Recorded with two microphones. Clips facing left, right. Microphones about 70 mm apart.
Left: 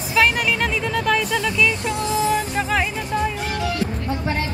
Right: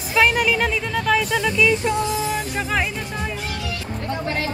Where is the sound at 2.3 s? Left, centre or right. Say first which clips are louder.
Left 3 dB; centre.